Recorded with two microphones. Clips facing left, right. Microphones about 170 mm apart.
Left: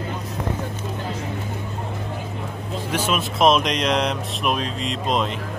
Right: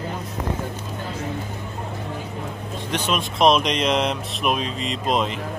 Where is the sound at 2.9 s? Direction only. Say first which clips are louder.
Left 1 dB; 5° left (ahead or behind).